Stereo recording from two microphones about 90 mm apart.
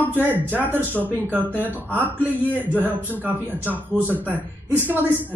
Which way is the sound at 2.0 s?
20° left (ahead or behind).